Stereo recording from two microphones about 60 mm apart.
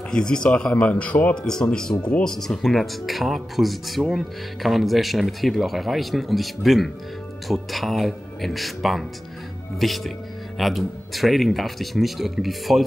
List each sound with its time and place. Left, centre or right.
0.1 s speech: centre
1.4 s speech: centre
2.3 s speech: centre